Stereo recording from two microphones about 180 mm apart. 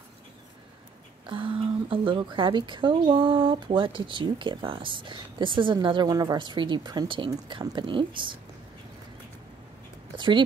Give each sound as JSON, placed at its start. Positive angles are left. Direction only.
{"t": 1.3, "sound": "speech", "side_deg": -30}
{"t": 10.1, "sound": "speech", "side_deg": -25}